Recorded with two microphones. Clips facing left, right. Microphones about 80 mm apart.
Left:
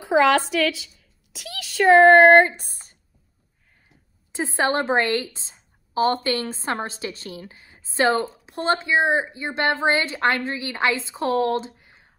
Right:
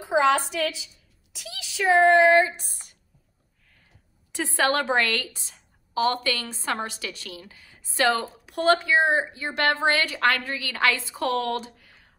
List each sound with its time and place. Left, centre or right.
0.0 s a woman's voice: left
2.7 s a sound: left
4.3 s a woman's voice: left